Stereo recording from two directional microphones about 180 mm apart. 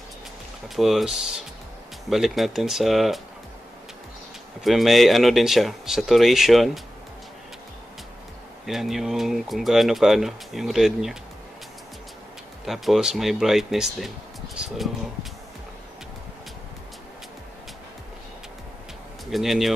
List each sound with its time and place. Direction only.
0.7 s speech: centre (ahead or behind)
4.6 s speech: centre (ahead or behind)
8.6 s speech: centre (ahead or behind)
12.6 s speech: centre (ahead or behind)
19.3 s speech: centre (ahead or behind)